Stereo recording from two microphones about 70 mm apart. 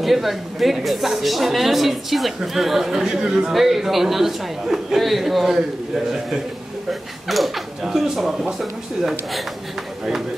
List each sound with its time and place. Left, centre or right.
0.0 s speech: centre